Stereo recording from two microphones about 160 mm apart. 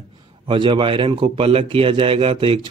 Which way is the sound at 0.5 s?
30° right (ahead or behind).